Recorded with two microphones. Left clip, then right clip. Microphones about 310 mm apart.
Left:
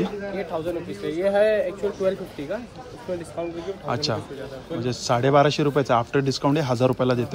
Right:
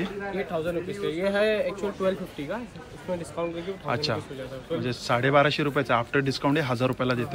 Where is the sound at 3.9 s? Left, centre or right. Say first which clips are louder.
Left 2 dB; centre.